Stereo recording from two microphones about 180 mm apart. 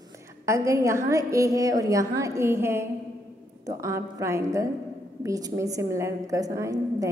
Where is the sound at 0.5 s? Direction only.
15° right (ahead or behind).